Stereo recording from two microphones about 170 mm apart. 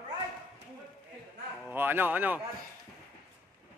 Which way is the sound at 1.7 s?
10° right (ahead or behind).